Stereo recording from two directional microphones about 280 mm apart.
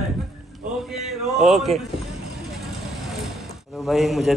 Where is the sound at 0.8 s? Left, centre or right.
Centre.